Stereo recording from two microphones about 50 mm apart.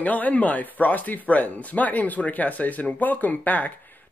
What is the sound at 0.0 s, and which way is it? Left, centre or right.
Speech, left.